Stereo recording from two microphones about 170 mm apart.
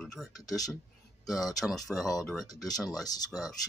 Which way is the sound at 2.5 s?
20° left (ahead or behind).